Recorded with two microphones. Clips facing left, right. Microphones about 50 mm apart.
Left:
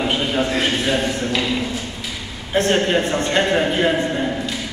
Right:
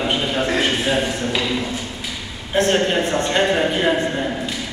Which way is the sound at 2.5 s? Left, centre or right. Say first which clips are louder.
Even; centre.